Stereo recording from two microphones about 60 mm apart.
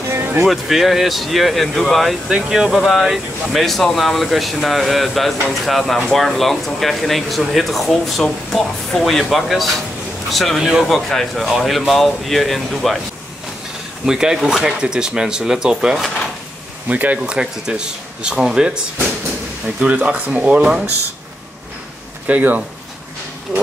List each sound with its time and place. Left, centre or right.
0.1 s music: right
0.5 s speech: centre
2.2 s speech: centre
11.1 s speech: centre
14.0 s speech: centre
16.8 s speech: right
17.2 s speech: centre
22.3 s speech: right